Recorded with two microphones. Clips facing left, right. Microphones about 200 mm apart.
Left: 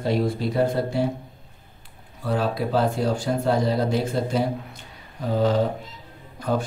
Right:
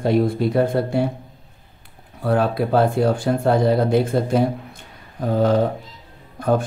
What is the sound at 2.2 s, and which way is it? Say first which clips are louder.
Speech: right 5 dB; 55° right (ahead or behind).